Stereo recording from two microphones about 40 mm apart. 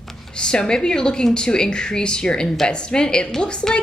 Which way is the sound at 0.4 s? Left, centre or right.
Centre.